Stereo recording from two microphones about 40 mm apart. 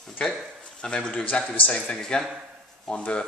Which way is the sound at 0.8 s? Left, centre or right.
Centre.